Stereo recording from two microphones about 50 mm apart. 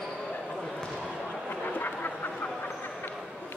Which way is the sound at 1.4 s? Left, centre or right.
Left.